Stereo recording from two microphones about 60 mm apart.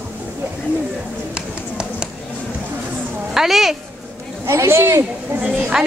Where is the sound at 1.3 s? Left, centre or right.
Centre.